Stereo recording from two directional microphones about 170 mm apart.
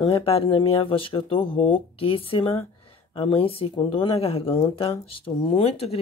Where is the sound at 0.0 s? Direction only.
35° left (ahead or behind).